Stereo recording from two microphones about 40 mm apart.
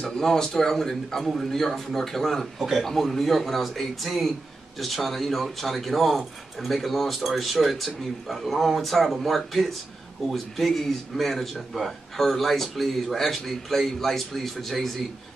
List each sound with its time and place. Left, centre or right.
0.0 s speech: centre